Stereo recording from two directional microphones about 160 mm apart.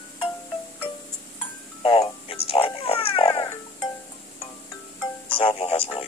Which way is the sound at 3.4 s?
25° left (ahead or behind).